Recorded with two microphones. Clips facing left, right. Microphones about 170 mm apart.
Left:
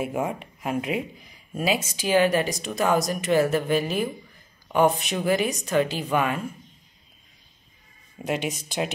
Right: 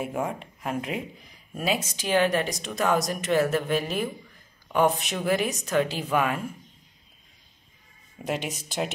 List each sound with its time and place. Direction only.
0.0 s speech: 5° left (ahead or behind)
8.2 s speech: centre (ahead or behind)